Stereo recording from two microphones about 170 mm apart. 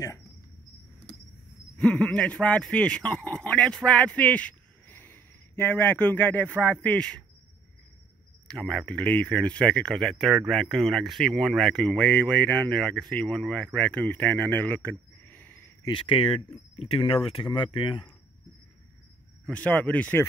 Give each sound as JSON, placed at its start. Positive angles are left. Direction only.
{"t": 1.8, "sound": "a man's voice", "side_deg": 5}
{"t": 8.5, "sound": "speech", "side_deg": 5}
{"t": 15.8, "sound": "speech", "side_deg": 30}
{"t": 19.4, "sound": "a man's voice", "side_deg": 10}